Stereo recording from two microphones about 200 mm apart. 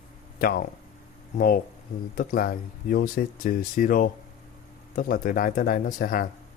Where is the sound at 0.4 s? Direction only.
45° left (ahead or behind).